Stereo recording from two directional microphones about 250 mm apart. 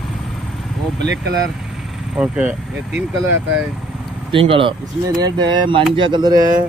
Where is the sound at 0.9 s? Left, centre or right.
Right.